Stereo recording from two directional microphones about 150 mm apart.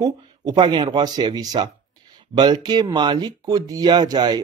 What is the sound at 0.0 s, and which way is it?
Speech, 25° right (ahead or behind).